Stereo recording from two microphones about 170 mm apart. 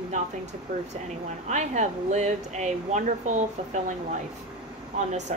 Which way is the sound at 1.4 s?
45° right (ahead or behind).